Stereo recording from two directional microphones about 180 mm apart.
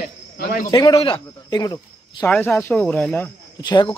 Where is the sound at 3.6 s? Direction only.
25° left (ahead or behind).